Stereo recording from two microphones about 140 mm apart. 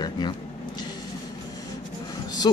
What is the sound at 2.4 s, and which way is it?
Speech, 30° left (ahead or behind).